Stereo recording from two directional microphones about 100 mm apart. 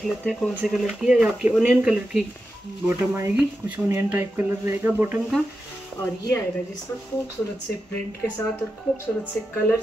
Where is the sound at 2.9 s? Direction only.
20° right (ahead or behind).